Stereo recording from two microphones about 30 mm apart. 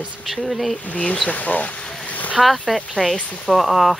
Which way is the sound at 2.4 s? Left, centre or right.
Centre.